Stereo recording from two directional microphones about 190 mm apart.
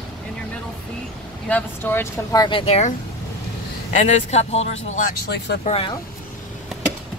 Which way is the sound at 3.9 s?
35° left (ahead or behind).